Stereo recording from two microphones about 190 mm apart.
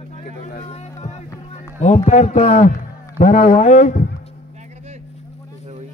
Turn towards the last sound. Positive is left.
turn(degrees=40)  # may be behind; listen again after turning